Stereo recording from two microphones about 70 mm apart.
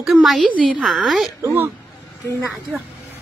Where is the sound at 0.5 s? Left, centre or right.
Centre.